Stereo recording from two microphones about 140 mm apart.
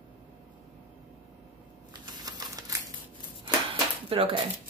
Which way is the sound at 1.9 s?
30° right (ahead or behind).